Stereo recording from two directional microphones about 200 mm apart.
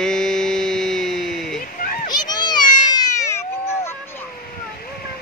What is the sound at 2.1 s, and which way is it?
Cat, 20° left (ahead or behind).